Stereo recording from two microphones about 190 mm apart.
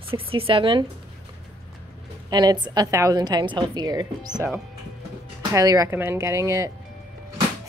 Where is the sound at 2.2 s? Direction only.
20° right (ahead or behind).